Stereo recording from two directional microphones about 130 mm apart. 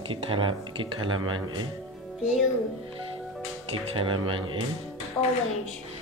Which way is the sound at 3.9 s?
40° right (ahead or behind).